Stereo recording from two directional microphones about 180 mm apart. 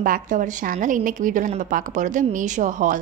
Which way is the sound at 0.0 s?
50° right (ahead or behind).